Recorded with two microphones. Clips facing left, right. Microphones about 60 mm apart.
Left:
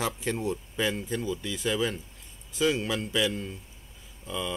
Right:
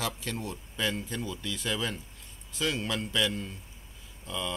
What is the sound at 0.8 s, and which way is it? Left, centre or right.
Speech, centre.